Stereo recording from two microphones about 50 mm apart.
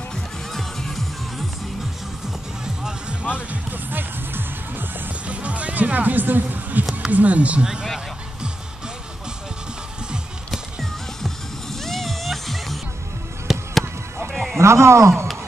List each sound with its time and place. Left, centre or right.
0.1 s music: centre
2.6 s music: centre
3.7 s music: right
5.3 s music: right
7.1 s speech: right
7.6 s speech: centre
10.5 s music: centre
13.5 s fireworks: centre
14.3 s a sound: centre
14.6 s a man's voice: right